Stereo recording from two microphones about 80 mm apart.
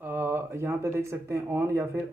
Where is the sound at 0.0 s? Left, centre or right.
Right.